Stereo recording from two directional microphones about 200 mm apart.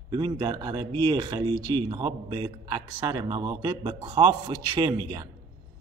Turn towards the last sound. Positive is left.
turn(degrees=-20)  # may be behind; listen again after turning